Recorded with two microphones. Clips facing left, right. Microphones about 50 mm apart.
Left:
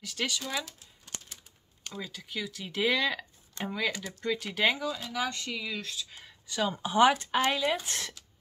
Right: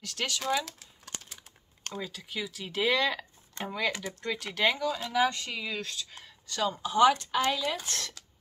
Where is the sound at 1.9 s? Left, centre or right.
Centre.